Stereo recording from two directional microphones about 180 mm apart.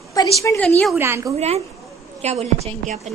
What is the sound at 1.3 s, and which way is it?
A woman's voice, 35° right (ahead or behind).